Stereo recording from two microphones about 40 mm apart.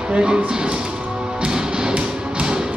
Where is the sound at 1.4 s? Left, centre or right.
Centre.